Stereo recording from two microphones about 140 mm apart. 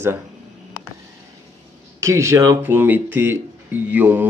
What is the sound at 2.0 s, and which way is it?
Speech, 20° right (ahead or behind).